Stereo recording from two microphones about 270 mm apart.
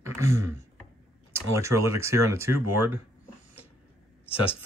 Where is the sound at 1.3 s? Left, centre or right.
Centre.